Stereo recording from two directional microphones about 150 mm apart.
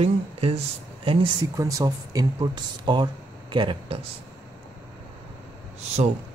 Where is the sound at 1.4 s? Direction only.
20° right (ahead or behind).